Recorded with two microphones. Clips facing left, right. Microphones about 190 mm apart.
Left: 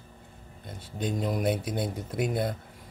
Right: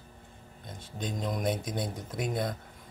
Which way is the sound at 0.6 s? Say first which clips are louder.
Left 5 dB; 5° left (ahead or behind).